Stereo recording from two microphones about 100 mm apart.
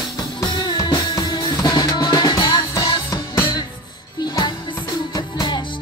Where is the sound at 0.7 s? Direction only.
45° left (ahead or behind).